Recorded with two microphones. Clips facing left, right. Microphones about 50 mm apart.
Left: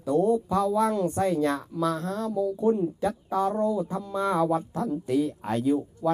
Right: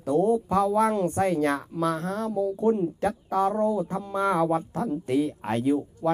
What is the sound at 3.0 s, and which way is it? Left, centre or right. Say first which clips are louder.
Speech: right 2 dB; right.